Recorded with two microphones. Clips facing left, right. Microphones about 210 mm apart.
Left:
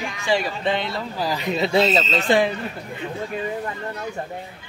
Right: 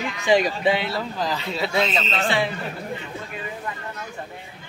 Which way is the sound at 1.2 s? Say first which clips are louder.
Left 6 dB; 10° left (ahead or behind).